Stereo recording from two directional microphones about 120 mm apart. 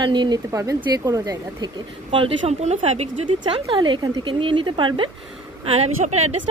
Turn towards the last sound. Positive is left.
turn(degrees=-60)  # may be behind; listen again after turning